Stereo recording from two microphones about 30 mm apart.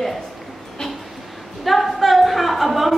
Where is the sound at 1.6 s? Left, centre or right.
Centre.